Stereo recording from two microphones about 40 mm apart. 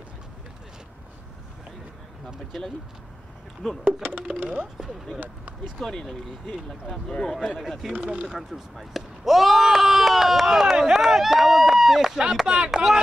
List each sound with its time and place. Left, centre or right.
3.8 s speech: right
4.3 s speech: right
5.8 s speech: centre
6.0 s speech: centre
7.9 s speech: right
8.4 s speech: centre
12.4 s speech: right
12.7 s speech: centre